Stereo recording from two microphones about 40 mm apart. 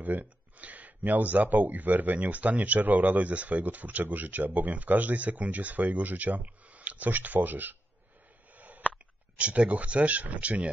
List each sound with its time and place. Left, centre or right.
0.0 s speech: right
7.1 s speech: right
8.5 s a sound: right
8.9 s speech: right